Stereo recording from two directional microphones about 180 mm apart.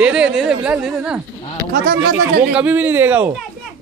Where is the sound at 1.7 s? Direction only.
55° right (ahead or behind).